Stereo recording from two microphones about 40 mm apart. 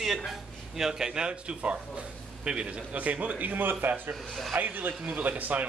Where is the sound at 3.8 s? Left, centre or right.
Right.